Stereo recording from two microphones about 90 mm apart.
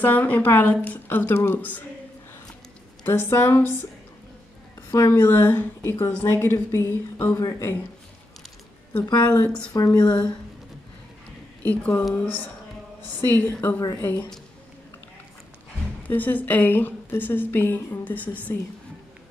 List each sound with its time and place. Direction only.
0.0 s a woman's voice: 20° left (ahead or behind)
3.1 s a woman's voice: 30° left (ahead or behind)
4.9 s a woman's voice: 30° left (ahead or behind)
8.9 s a woman's voice: 20° left (ahead or behind)
11.6 s a woman's voice: 20° left (ahead or behind)
16.0 s a woman's voice: 20° left (ahead or behind)